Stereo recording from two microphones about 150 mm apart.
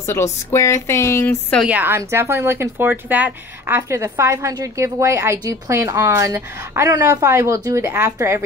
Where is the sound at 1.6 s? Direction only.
10° right (ahead or behind).